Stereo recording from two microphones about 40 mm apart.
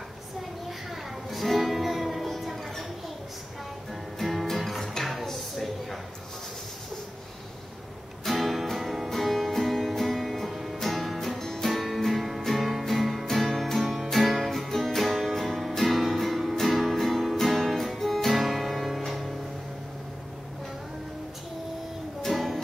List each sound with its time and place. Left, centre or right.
1.3 s music: centre
4.2 s music: centre
8.3 s music: centre
22.2 s music: centre